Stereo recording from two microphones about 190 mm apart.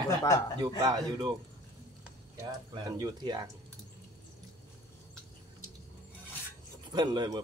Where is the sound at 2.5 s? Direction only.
20° right (ahead or behind).